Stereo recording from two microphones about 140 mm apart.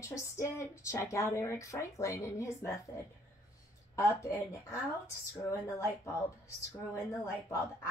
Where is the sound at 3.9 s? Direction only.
20° left (ahead or behind).